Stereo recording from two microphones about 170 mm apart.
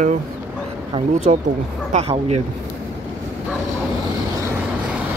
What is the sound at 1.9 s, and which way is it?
Speech, 35° right (ahead or behind).